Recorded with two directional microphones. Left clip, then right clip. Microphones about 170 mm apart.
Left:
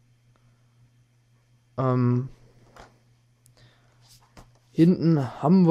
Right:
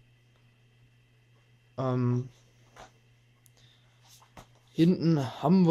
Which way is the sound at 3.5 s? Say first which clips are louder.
Left 3 dB; 40° left (ahead or behind).